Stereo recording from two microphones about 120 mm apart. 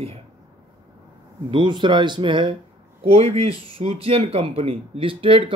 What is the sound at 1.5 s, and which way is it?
Speech, 40° right (ahead or behind).